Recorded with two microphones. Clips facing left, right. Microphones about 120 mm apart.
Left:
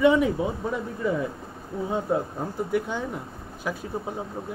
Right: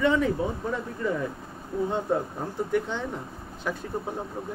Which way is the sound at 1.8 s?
5° left (ahead or behind).